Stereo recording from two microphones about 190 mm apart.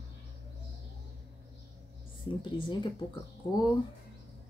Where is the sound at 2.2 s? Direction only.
25° left (ahead or behind).